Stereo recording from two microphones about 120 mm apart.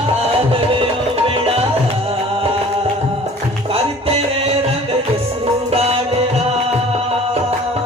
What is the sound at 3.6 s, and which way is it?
Music, 55° right (ahead or behind).